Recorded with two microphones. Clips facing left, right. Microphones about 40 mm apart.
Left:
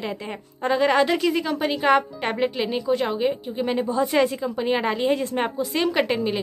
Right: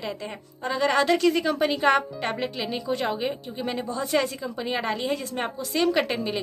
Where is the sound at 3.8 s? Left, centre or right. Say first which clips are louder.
Left 5 dB; centre.